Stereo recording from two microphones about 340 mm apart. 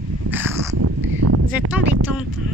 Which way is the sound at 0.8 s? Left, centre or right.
Right.